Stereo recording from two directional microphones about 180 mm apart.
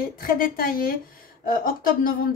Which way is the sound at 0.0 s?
55° left (ahead or behind).